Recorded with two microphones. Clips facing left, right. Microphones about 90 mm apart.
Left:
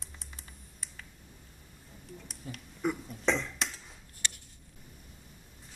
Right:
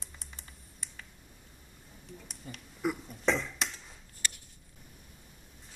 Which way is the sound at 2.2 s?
Centre (ahead or behind).